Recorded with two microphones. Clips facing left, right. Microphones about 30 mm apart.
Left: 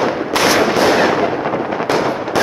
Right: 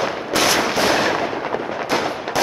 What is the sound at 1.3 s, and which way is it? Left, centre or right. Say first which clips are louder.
Artillery fire: left 5 dB; centre.